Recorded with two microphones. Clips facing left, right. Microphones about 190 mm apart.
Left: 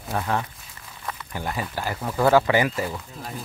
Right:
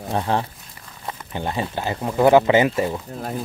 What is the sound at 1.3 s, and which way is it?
Speech, 25° right (ahead or behind).